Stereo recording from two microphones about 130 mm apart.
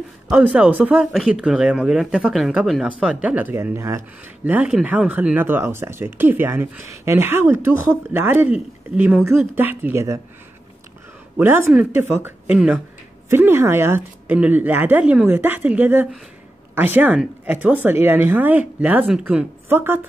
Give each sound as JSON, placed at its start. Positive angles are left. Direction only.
{"t": 0.3, "sound": "speech", "side_deg": -10}
{"t": 4.5, "sound": "speech", "side_deg": -10}
{"t": 11.3, "sound": "speech", "side_deg": -15}